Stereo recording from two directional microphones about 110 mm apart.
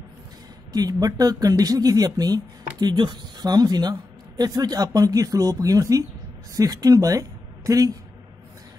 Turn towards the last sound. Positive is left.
turn(degrees=-30)  # may be behind; listen again after turning